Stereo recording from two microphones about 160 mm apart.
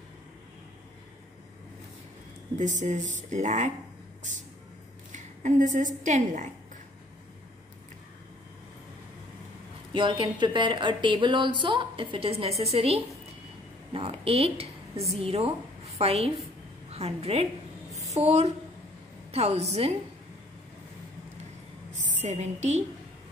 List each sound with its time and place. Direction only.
2.5 s speech: 50° right (ahead or behind)
5.1 s a woman's voice: 50° right (ahead or behind)
9.9 s a woman's voice: 30° right (ahead or behind)
22.0 s a woman's voice: 50° right (ahead or behind)